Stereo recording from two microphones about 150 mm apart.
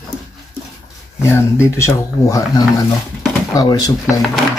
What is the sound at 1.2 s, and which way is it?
Speech, 20° left (ahead or behind).